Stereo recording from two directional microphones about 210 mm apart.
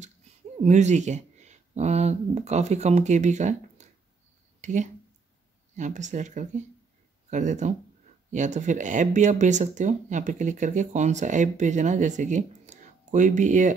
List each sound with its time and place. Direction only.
0.6 s speech: 35° right (ahead or behind)
4.6 s a sound: 35° right (ahead or behind)
5.8 s speech: 35° right (ahead or behind)